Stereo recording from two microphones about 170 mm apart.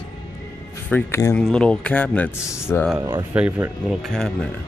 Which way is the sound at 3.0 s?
20° right (ahead or behind).